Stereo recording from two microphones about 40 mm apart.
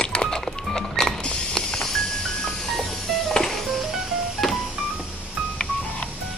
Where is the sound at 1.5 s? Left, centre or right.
Centre.